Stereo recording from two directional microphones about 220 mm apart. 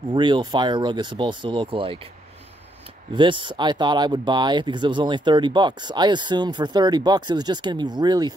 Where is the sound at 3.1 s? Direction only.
20° right (ahead or behind).